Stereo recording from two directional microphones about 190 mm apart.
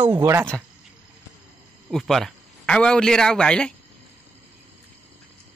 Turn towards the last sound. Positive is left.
turn(degrees=5)  # may be behind; listen again after turning